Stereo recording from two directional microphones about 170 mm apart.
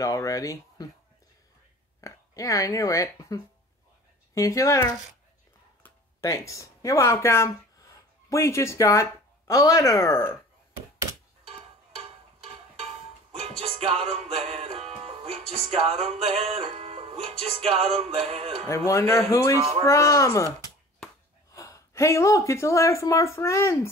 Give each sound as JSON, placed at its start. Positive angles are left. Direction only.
{"t": 0.0, "sound": "speech", "side_deg": 20}
{"t": 2.0, "sound": "speech", "side_deg": 20}
{"t": 4.4, "sound": "speech", "side_deg": 20}
{"t": 11.4, "sound": "music", "side_deg": -35}
{"t": 18.7, "sound": "speech", "side_deg": 15}
{"t": 21.5, "sound": "speech", "side_deg": 15}